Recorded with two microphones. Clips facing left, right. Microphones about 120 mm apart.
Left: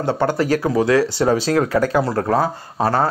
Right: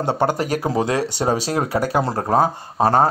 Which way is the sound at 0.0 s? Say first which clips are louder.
Left 1 dB; 15° right (ahead or behind).